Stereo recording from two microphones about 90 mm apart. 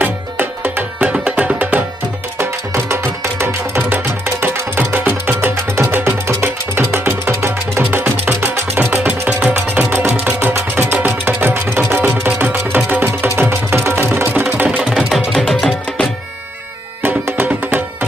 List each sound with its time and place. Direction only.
0.0 s music: 20° right (ahead or behind)
2.3 s music: 30° right (ahead or behind); by 15.7 s centre (ahead or behind)
17.0 s music: 20° right (ahead or behind)